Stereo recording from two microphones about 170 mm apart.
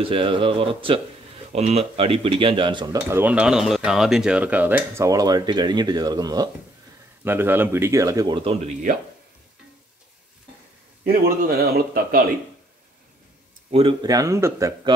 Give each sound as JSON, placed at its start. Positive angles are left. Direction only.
{"t": 0.0, "sound": "speech", "side_deg": -30}
{"t": 3.1, "sound": "speech", "side_deg": -10}
{"t": 7.2, "sound": "speech", "side_deg": -10}
{"t": 11.1, "sound": "a man's voice", "side_deg": -60}
{"t": 13.7, "sound": "speech", "side_deg": -35}
{"t": 14.0, "sound": "speech", "side_deg": -20}